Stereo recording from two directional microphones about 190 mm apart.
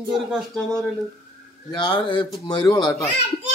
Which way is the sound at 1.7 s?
25° left (ahead or behind).